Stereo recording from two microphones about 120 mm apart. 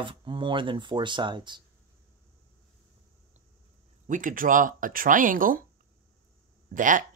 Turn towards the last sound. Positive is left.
turn(degrees=-90)